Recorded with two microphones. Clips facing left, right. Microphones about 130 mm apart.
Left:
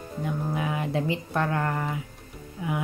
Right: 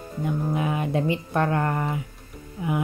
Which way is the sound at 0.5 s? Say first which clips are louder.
Right 2 dB; 20° right (ahead or behind).